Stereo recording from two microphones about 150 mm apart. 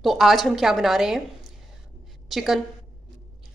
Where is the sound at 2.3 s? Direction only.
Centre (ahead or behind).